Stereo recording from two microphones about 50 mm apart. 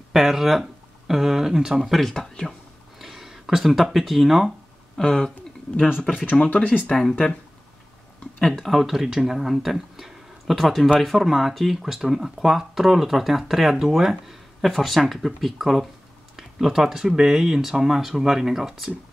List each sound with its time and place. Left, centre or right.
0.1 s speech: centre
1.8 s speech: centre
4.9 s speech: centre
6.3 s speech: left
6.9 s speech: centre
8.5 s speech: centre